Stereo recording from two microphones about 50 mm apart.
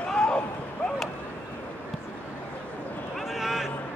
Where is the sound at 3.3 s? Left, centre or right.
Centre.